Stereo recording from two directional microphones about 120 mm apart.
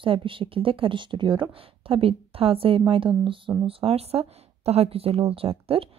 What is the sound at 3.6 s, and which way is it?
Speech, 55° right (ahead or behind).